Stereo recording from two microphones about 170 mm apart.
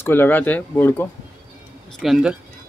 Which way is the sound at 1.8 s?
Centre (ahead or behind).